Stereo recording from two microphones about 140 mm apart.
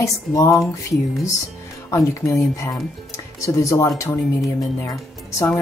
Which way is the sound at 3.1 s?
20° left (ahead or behind).